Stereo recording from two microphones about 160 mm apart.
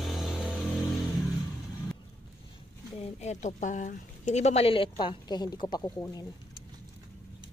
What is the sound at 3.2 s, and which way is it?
A woman's voice, 45° left (ahead or behind).